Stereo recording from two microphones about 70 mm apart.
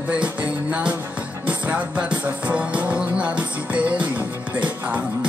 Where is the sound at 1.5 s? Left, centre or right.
Centre.